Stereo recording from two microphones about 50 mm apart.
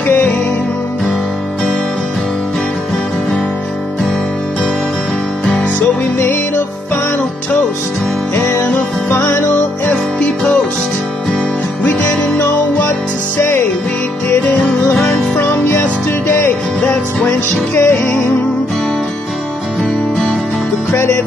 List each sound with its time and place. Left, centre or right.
0.0 s music: left
8.5 s music: left
11.8 s music: left
13.4 s music: left
14.4 s music: left
15.3 s music: left
20.9 s music: left